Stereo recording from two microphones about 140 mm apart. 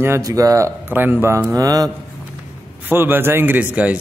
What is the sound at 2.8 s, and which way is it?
A man's voice, 15° right (ahead or behind).